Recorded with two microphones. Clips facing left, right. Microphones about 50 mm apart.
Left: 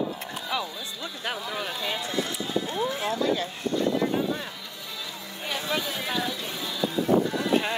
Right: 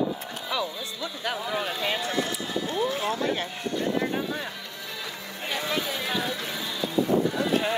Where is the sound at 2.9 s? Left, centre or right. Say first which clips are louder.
Left 1 dB; right.